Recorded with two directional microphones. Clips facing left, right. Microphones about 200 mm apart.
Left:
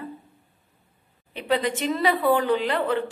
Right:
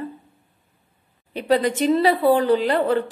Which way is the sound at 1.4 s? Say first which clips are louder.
Right 5 dB; 40° right (ahead or behind).